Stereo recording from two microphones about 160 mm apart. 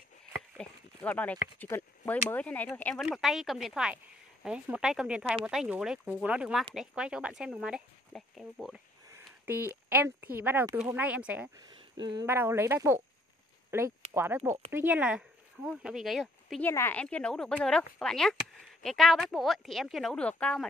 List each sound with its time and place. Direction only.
0.6 s speech: 10° left (ahead or behind)
3.1 s speech: centre (ahead or behind)
11.5 s speech: 25° right (ahead or behind)
12.3 s speech: 15° right (ahead or behind)
16.6 s speech: 15° left (ahead or behind)